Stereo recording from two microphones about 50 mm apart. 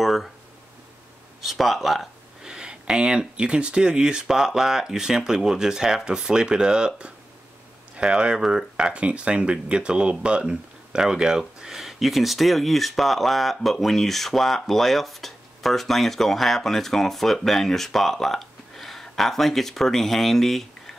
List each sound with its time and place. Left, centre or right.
0.0 s a sound: centre
1.4 s speech: centre
2.4 s speech: centre
7.9 s speech: centre
8.9 s speech: right; by 20.9 s centre